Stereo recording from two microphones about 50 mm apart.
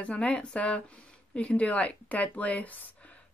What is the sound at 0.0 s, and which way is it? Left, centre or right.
Speech, left.